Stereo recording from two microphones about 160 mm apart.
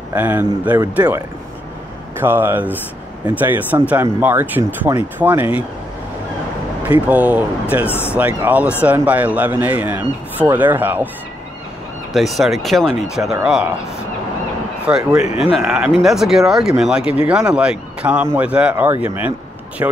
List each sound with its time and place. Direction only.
0.1 s a man's voice: 10° right (ahead or behind)
7.1 s a man's voice: 10° right (ahead or behind)
7.8 s speech: 15° left (ahead or behind)
8.2 s a man's voice: 10° right (ahead or behind)
12.1 s speech: centre (ahead or behind)
14.9 s a man's voice: 10° right (ahead or behind)
15.2 s speech: 40° left (ahead or behind)
15.5 s a man's voice: centre (ahead or behind)
19.8 s speech: 20° right (ahead or behind)